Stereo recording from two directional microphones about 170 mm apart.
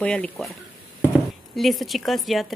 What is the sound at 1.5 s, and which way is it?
Speech, centre (ahead or behind).